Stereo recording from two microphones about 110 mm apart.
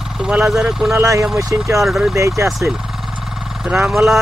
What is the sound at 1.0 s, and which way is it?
Speech, 30° right (ahead or behind).